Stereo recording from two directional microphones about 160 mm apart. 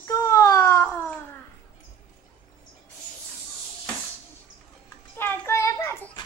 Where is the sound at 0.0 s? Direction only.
20° left (ahead or behind).